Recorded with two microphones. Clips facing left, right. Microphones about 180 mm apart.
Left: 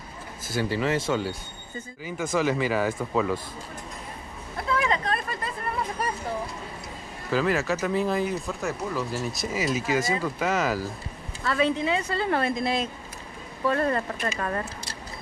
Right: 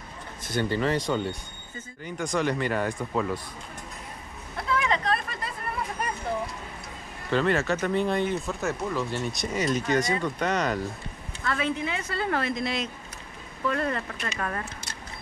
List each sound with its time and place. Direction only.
0.4 s speech: 5° left (ahead or behind)
4.7 s vehicle: 35° left (ahead or behind)
7.2 s speech: 5° left (ahead or behind)
11.4 s speech: 30° left (ahead or behind)
13.7 s speech: 35° left (ahead or behind)